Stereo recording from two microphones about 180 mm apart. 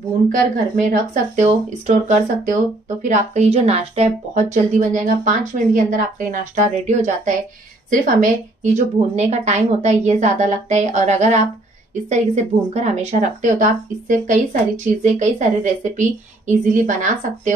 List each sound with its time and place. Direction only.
0.3 s a woman's voice: 45° right (ahead or behind)